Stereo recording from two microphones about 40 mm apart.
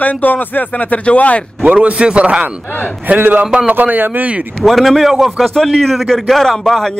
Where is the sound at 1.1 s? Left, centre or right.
Left.